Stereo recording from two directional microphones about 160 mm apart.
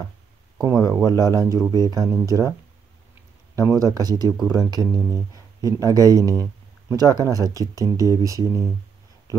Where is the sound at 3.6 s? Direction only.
20° right (ahead or behind).